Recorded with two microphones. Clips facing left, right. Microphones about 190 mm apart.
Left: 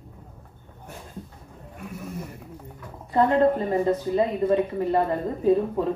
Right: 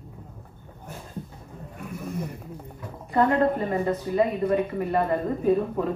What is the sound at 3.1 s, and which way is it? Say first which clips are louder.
A woman's voice: left 2 dB; 25° left (ahead or behind).